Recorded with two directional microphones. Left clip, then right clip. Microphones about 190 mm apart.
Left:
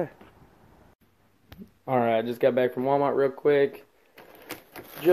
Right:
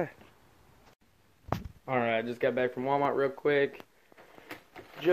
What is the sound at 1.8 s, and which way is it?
Speech, 20° left (ahead or behind).